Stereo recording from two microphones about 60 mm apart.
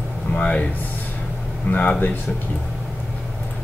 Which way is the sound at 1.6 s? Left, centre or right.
Left.